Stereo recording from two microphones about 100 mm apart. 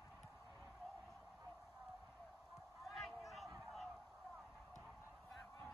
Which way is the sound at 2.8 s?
Centre (ahead or behind).